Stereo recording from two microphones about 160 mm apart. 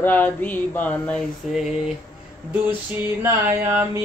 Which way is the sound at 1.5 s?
5° right (ahead or behind).